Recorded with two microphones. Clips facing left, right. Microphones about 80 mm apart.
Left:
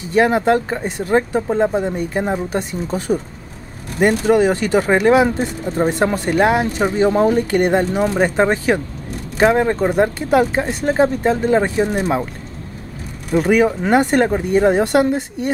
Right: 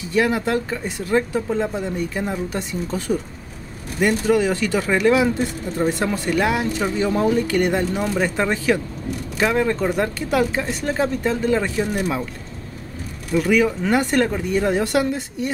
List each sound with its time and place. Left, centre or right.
0.1 s speech: left
13.3 s speech: left